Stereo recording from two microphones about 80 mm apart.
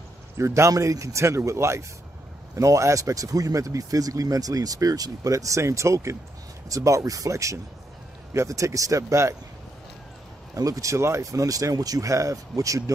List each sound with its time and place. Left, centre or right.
0.4 s speech: right
10.5 s speech: right